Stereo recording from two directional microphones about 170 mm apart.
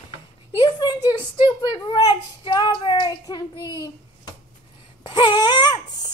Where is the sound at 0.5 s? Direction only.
25° left (ahead or behind).